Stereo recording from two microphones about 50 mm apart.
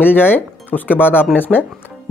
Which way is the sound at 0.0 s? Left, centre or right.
Left.